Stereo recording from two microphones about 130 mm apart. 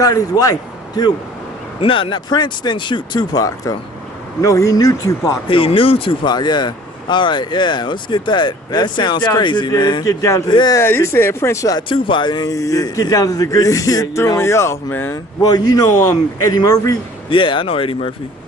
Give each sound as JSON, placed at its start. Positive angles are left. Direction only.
{"t": 0.0, "sound": "speech", "side_deg": 25}
{"t": 1.8, "sound": "speech", "side_deg": 40}
{"t": 5.5, "sound": "speech", "side_deg": 45}
{"t": 10.8, "sound": "speech", "side_deg": 20}
{"t": 11.9, "sound": "speech", "side_deg": 35}
{"t": 15.4, "sound": "speech", "side_deg": 30}
{"t": 17.3, "sound": "speech", "side_deg": 40}